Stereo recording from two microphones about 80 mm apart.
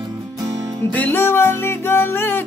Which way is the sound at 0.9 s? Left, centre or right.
Left.